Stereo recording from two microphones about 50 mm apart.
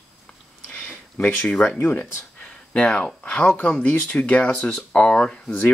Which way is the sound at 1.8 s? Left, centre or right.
Left.